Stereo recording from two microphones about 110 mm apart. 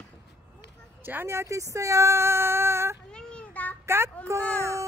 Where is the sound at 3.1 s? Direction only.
10° left (ahead or behind).